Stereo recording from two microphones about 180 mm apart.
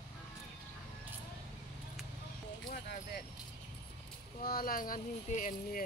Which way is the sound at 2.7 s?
60° left (ahead or behind).